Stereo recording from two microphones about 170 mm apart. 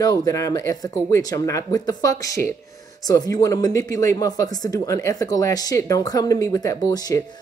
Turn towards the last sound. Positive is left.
turn(degrees=20)  # may be behind; listen again after turning